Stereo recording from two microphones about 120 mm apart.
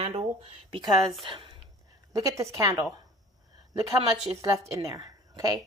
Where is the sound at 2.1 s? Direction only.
25° right (ahead or behind).